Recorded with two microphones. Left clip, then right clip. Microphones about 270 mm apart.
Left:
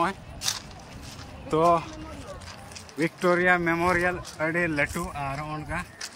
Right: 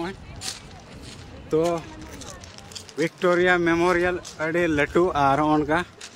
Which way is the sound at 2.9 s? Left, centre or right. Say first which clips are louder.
Right 3 dB; centre.